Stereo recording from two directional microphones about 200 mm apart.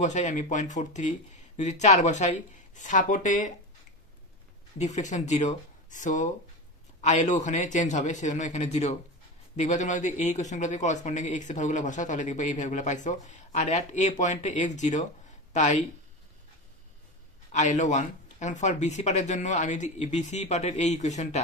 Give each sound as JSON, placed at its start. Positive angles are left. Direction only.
{"t": 0.0, "sound": "speech", "side_deg": 35}
{"t": 4.7, "sound": "a man's voice", "side_deg": 35}
{"t": 17.5, "sound": "speech", "side_deg": 35}